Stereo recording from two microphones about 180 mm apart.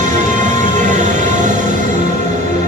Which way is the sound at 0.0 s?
40° right (ahead or behind).